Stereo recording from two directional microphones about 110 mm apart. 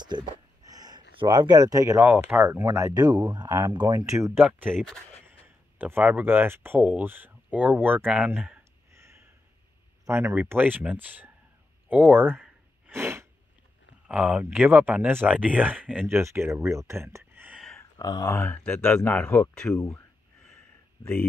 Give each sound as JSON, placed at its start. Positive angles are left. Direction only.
{"t": 0.0, "sound": "a sound", "side_deg": -40}
{"t": 2.0, "sound": "speech", "side_deg": -20}
{"t": 4.5, "sound": "speech", "side_deg": -15}
{"t": 5.8, "sound": "speech", "side_deg": -20}
{"t": 10.0, "sound": "speech", "side_deg": -20}
{"t": 11.9, "sound": "gasp", "side_deg": -15}
{"t": 14.0, "sound": "speech", "side_deg": -10}
{"t": 17.9, "sound": "speech", "side_deg": 35}
{"t": 18.3, "sound": "speech", "side_deg": 15}